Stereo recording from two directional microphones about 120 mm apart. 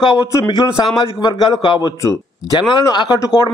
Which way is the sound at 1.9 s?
25° left (ahead or behind).